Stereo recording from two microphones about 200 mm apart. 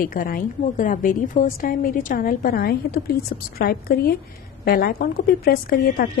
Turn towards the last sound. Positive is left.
turn(degrees=45)  # may be behind; listen again after turning